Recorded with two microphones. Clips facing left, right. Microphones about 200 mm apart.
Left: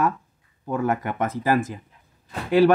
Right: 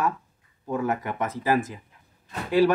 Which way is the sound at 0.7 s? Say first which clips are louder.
Left 2 dB; 55° left (ahead or behind).